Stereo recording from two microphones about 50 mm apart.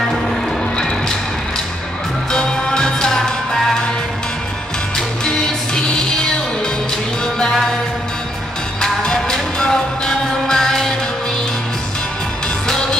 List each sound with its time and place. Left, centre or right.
0.7 s music: centre
2.3 s music: centre
4.9 s music: centre
8.8 s music: centre